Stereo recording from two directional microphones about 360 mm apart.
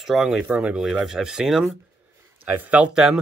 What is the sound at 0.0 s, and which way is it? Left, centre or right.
Speech, centre.